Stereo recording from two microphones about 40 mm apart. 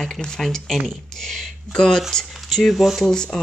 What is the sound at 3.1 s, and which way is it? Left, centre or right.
Speech, centre.